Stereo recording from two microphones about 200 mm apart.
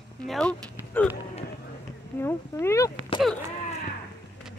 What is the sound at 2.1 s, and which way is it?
Speech, 10° left (ahead or behind).